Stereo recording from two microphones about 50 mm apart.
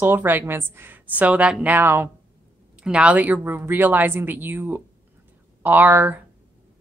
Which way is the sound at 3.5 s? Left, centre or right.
Right.